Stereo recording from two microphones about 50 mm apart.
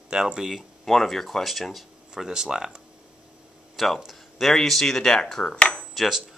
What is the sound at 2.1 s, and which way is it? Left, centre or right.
Speech, centre.